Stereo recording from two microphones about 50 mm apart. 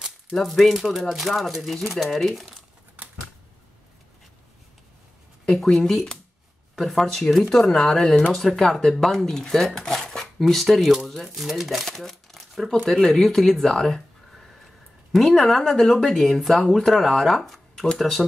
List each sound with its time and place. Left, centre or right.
0.3 s speech: centre
3.0 s typewriter: right
6.8 s a woman's voice: centre